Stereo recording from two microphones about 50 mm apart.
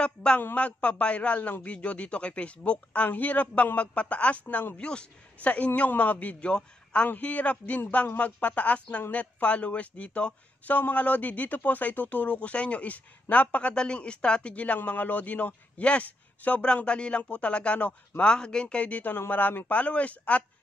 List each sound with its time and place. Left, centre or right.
0.0 s a man's voice: centre
19.1 s speech: left